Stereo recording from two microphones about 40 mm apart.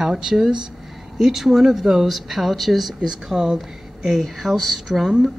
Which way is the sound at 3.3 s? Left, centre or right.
Centre.